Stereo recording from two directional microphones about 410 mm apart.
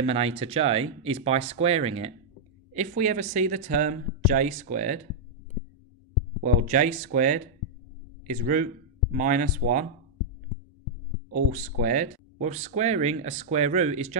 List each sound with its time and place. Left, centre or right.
0.0 s speech: centre
6.4 s speech: centre
11.5 s speech: centre